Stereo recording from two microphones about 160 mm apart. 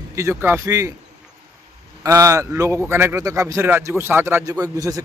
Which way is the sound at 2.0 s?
20° right (ahead or behind).